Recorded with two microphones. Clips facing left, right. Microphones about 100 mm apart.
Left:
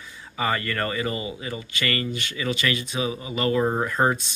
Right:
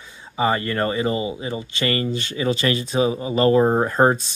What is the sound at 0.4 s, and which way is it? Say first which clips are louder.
Speech: right 5 dB; 25° right (ahead or behind).